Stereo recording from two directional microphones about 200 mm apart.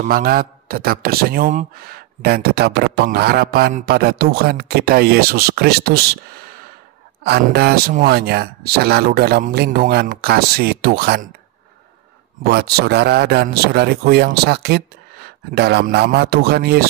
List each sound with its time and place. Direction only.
0.0 s speech: 45° right (ahead or behind)
7.2 s speech: 55° right (ahead or behind)
12.4 s speech: 50° right (ahead or behind)